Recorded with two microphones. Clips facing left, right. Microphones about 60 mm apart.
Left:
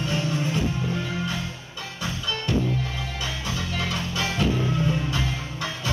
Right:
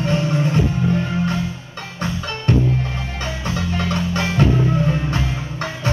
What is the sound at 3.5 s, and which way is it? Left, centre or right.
Music, right.